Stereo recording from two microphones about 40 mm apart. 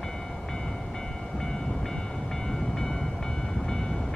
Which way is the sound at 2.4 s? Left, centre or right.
Centre.